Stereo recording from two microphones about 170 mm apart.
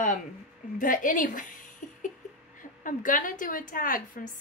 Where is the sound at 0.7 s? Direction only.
50° left (ahead or behind).